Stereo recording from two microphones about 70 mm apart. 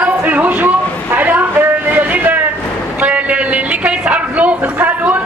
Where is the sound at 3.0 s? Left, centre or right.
Centre.